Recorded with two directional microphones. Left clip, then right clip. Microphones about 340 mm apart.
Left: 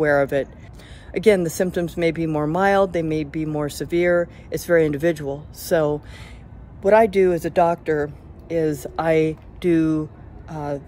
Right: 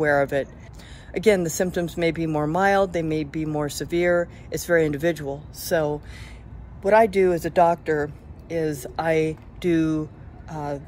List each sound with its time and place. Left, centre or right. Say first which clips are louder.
0.0 s speech: left 2 dB; centre